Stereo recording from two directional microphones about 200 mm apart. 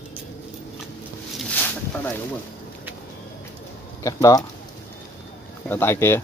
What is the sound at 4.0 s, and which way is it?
Speech, 15° left (ahead or behind).